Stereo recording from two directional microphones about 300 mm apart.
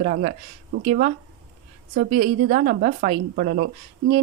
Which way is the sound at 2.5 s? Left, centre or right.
Right.